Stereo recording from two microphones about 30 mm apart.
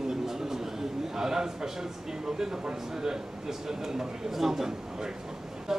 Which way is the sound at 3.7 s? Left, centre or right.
Right.